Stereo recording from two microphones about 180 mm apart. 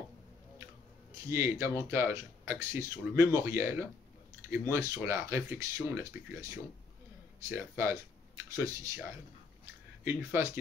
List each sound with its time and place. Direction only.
1.3 s speech: 15° right (ahead or behind)
10.0 s speech: 15° right (ahead or behind)